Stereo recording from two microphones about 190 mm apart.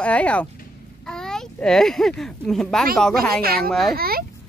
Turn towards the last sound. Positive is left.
turn(degrees=-50)  # may be behind; listen again after turning